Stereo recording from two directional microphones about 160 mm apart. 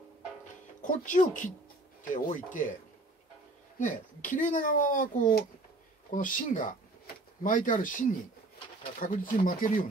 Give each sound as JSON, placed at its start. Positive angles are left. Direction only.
{"t": 0.8, "sound": "speech", "side_deg": 55}
{"t": 3.8, "sound": "speech", "side_deg": 55}